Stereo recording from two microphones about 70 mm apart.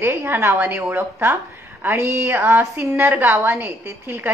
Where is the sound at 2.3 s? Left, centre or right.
Right.